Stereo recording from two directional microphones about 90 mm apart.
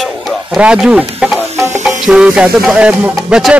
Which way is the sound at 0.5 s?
5° right (ahead or behind).